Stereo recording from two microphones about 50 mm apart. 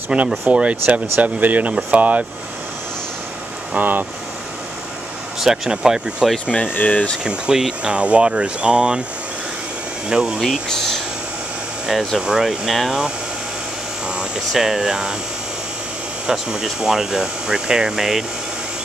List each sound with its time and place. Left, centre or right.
0.1 s speech: centre
3.7 s speech: right
5.4 s speech: centre
6.7 s speech: left
7.2 s speech: centre
10.0 s speech: centre
12.2 s speech: centre
12.4 s speech: centre
14.5 s speech: centre
16.3 s speech: centre